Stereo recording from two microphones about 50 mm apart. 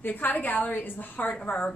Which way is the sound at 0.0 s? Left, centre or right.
Left.